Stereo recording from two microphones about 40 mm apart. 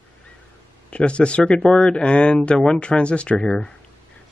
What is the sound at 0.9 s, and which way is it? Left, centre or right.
Speech, left.